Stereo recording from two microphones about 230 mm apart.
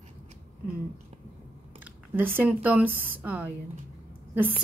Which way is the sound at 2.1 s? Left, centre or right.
Centre.